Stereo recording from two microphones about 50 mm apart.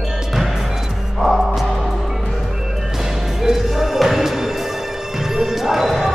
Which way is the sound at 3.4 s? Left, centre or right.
Centre.